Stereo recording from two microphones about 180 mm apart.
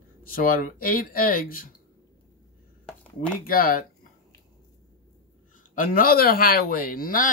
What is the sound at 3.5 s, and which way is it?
Speech, 55° left (ahead or behind).